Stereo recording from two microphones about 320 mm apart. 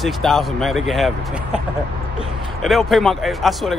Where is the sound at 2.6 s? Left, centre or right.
Centre.